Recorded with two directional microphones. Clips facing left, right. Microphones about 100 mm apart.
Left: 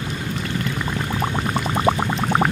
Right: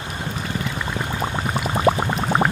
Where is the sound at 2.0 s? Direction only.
10° right (ahead or behind).